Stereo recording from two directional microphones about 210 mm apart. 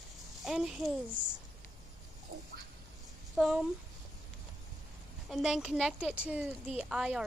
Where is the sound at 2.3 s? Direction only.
40° right (ahead or behind).